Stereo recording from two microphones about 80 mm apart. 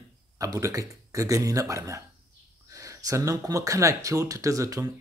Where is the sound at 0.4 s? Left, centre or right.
Right.